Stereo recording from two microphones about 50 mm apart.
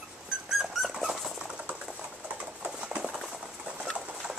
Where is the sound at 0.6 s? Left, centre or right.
Centre.